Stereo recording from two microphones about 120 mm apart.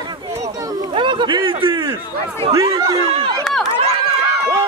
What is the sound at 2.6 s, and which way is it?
Speech, 55° right (ahead or behind).